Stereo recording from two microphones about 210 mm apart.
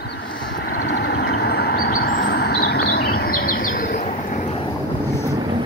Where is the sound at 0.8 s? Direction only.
55° left (ahead or behind); by 4.4 s 35° left (ahead or behind).